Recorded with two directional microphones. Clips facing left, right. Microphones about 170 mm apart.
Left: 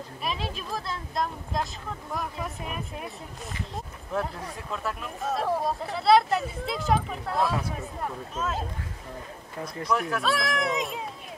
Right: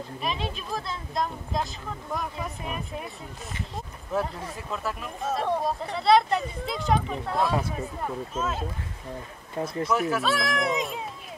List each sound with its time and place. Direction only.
0.2 s speech: centre (ahead or behind)
9.8 s speech: 5° right (ahead or behind)